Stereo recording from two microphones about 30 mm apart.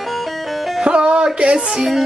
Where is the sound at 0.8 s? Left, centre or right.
Right.